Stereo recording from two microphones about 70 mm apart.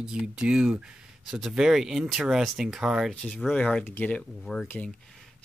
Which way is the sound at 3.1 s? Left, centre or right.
Centre.